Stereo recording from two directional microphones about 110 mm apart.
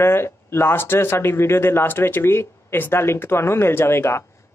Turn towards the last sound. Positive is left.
turn(degrees=25)  # may be behind; listen again after turning